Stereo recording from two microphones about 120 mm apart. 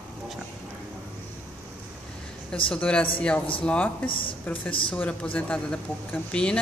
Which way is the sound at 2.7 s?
10° left (ahead or behind).